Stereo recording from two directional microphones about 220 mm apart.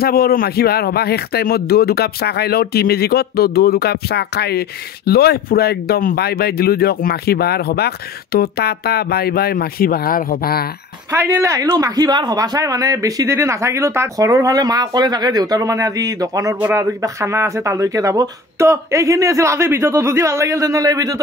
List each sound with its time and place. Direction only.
0.0 s speech: 45° left (ahead or behind)
11.1 s a man's voice: 15° right (ahead or behind)